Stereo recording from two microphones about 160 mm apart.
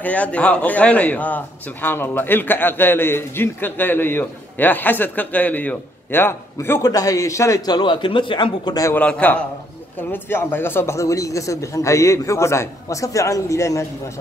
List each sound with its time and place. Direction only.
0.0 s a man's voice: 10° left (ahead or behind); by 8.9 s 25° left (ahead or behind)
8.9 s a man's voice: 10° left (ahead or behind)